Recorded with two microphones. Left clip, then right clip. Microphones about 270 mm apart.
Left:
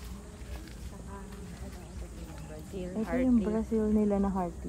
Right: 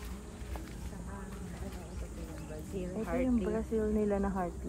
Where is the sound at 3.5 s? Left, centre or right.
Left.